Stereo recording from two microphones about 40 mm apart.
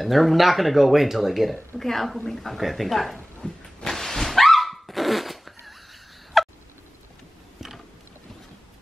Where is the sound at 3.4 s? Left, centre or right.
Left.